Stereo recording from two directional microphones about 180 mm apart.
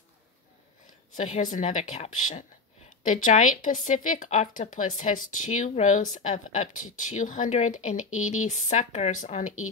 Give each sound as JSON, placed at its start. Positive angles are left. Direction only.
{"t": 1.1, "sound": "speech", "side_deg": 40}